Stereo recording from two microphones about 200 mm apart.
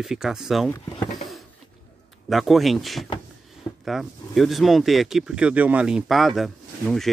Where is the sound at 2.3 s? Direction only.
Centre (ahead or behind).